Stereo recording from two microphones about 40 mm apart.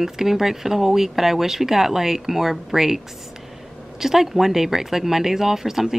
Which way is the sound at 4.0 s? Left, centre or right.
Centre.